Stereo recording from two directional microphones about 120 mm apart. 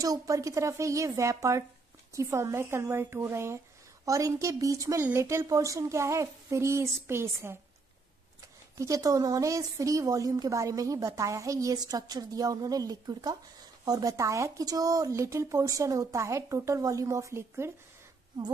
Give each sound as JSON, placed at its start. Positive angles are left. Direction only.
{"t": 0.0, "sound": "a woman's voice", "side_deg": -30}
{"t": 8.7, "sound": "a woman's voice", "side_deg": -25}